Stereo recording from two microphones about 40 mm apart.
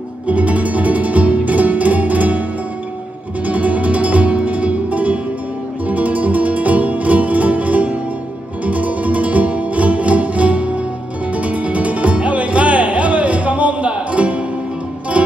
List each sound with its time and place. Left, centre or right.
0.3 s music: right
3.4 s flamenco: right
5.9 s music: right